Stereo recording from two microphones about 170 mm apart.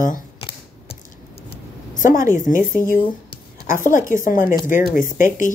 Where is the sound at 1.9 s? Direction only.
50° left (ahead or behind).